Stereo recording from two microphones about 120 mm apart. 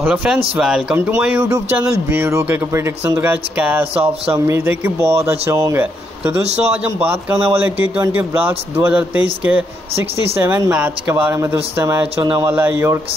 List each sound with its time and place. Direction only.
0.0 s a man's voice: 10° right (ahead or behind)
0.9 s a man's voice: 20° right (ahead or behind)
10.7 s a man's voice: 10° right (ahead or behind)
12.2 s speech: 40° right (ahead or behind)
12.4 s a man's voice: 15° right (ahead or behind)